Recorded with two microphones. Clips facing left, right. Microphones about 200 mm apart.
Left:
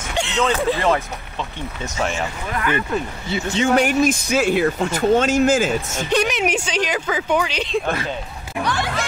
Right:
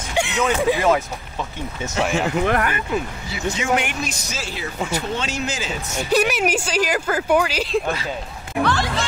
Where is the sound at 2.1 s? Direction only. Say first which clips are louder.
Right 7 dB; 65° right (ahead or behind).